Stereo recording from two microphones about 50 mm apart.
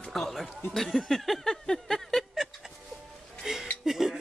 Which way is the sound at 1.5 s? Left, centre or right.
Centre.